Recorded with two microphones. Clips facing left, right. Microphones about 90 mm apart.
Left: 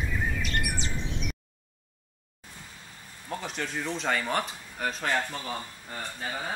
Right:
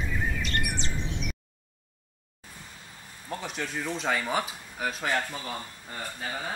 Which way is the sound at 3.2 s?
Centre (ahead or behind).